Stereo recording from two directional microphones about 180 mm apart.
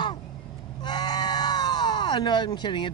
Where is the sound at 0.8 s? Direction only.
25° left (ahead or behind).